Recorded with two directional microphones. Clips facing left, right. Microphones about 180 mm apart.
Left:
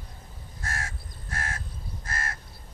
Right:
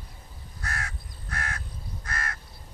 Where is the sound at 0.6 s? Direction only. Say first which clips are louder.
Even; 25° left (ahead or behind).